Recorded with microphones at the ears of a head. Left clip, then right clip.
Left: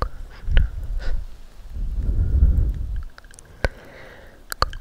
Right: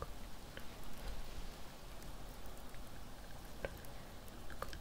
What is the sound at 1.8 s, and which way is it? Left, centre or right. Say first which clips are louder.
Thunder: left 14 dB; left.